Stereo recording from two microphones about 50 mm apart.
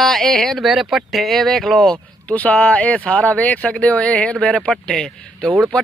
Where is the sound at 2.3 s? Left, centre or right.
Left.